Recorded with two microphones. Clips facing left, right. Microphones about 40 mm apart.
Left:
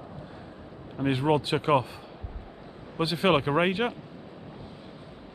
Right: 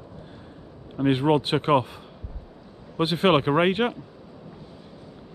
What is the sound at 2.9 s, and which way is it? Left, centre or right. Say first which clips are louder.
Speech: right 3 dB; right.